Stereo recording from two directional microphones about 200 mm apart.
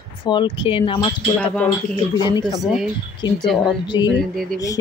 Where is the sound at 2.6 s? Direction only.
Centre (ahead or behind).